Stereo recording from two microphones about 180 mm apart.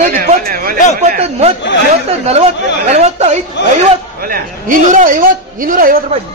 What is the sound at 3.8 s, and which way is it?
A man's voice, 50° right (ahead or behind).